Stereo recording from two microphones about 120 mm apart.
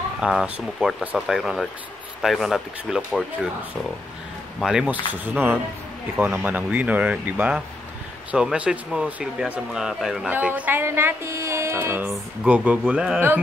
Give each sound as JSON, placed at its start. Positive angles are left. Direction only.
{"t": 0.2, "sound": "speech", "side_deg": -5}
{"t": 4.6, "sound": "speech", "side_deg": -5}